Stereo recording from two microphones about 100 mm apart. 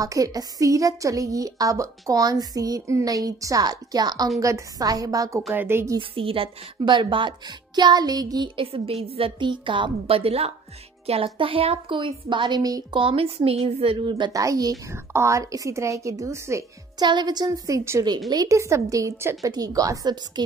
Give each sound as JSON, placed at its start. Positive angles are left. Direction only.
{"t": 0.0, "sound": "a woman's voice", "side_deg": -35}
{"t": 5.5, "sound": "a woman's voice", "side_deg": -25}
{"t": 5.9, "sound": "a woman's voice", "side_deg": -65}
{"t": 8.5, "sound": "a woman's voice", "side_deg": -75}
{"t": 9.4, "sound": "a woman's voice", "side_deg": -55}
{"t": 12.9, "sound": "a woman's voice", "side_deg": -65}
{"t": 14.3, "sound": "a woman's voice", "side_deg": -35}
{"t": 17.0, "sound": "a woman's voice", "side_deg": -50}